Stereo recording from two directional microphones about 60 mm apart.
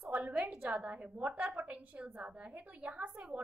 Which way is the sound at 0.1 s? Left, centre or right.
Right.